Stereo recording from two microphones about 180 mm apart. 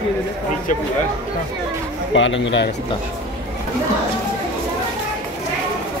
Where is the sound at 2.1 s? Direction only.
90° left.